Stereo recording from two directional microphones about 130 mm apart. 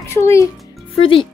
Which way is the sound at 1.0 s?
45° left (ahead or behind).